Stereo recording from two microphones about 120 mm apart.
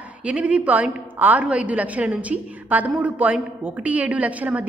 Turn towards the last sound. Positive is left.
turn(degrees=-15)  # may be behind; listen again after turning